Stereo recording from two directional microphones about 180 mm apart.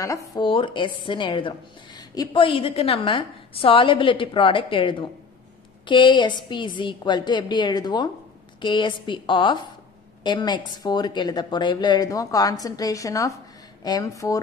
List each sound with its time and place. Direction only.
0.3 s a woman's voice: 30° left (ahead or behind)